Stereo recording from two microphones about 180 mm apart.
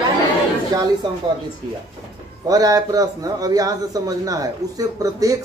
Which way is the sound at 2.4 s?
20° right (ahead or behind).